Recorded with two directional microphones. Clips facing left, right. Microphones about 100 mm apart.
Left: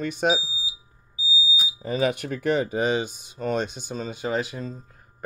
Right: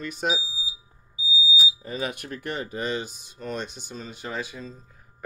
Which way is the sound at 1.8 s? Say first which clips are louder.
Left 7 dB; 90° left.